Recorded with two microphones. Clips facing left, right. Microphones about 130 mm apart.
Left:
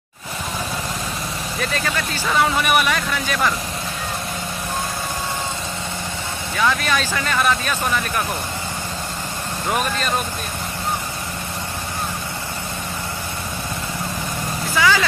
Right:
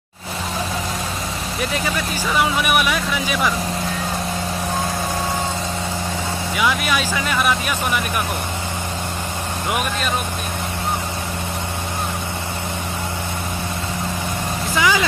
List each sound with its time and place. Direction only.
2.4 s speech: 5° right (ahead or behind)
6.5 s speech: 10° right (ahead or behind)
9.7 s speech: 10° right (ahead or behind)
14.8 s vehicle: 20° right (ahead or behind)